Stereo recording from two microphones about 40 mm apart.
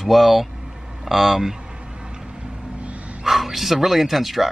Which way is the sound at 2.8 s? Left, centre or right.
Right.